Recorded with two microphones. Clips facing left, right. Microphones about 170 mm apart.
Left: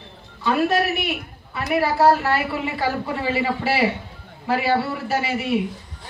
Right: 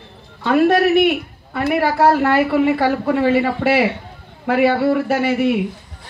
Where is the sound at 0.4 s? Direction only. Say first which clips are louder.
Right 6 dB; 55° right (ahead or behind).